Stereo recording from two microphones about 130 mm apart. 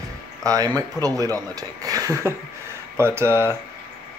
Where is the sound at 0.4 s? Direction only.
25° right (ahead or behind).